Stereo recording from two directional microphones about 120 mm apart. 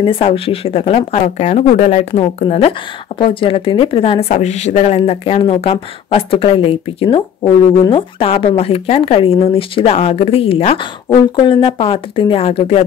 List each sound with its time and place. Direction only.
0.0 s speech: 50° left (ahead or behind)
1.1 s speech: 70° left (ahead or behind)
2.1 s speech: 50° left (ahead or behind)
11.4 s speech: 45° left (ahead or behind)